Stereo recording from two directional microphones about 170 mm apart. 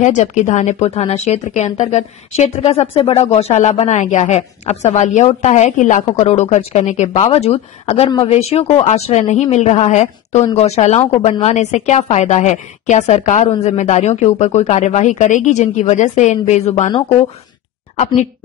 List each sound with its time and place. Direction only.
0.0 s a woman's voice: 45° left (ahead or behind)
17.9 s a woman's voice: 45° left (ahead or behind)